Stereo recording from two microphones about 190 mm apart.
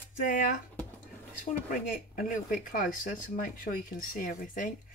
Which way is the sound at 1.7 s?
45° left (ahead or behind).